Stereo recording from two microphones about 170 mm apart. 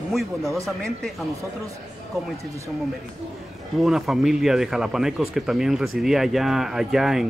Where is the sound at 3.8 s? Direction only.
Centre (ahead or behind).